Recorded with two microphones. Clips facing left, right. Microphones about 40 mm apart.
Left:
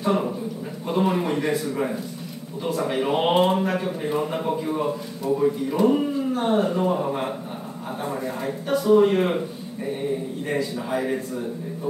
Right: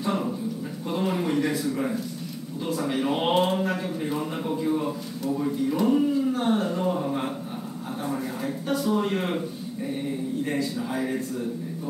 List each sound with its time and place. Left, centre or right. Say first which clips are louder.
0.0 s a man's voice: left 4 dB; centre
5.2 s speech: left 4 dB; centre
8.8 s speech: left 10 dB; centre
10.5 s a man's voice: left 3 dB; left